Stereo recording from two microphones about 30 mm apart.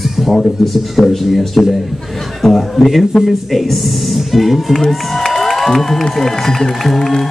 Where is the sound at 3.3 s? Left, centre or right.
Centre.